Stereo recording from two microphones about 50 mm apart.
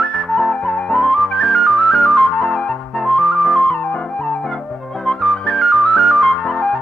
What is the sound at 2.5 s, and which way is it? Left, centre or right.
Music, centre.